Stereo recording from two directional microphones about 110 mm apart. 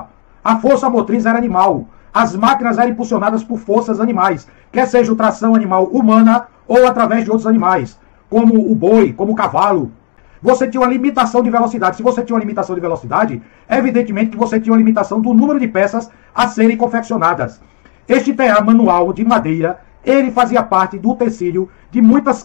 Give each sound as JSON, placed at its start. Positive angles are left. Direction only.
{"t": 0.4, "sound": "a man's voice", "side_deg": -15}
{"t": 3.0, "sound": "a man's voice", "side_deg": -5}
{"t": 5.2, "sound": "a man's voice", "side_deg": -5}
{"t": 8.8, "sound": "a man's voice", "side_deg": -10}